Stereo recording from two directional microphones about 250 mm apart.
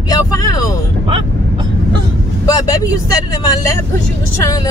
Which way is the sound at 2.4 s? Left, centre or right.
Centre.